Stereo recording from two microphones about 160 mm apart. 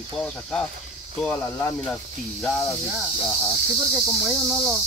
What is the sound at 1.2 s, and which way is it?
Speech, 10° left (ahead or behind).